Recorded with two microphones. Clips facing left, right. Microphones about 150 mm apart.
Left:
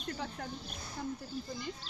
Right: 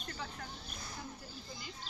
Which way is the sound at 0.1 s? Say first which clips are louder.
Left 5 dB; 45° left (ahead or behind).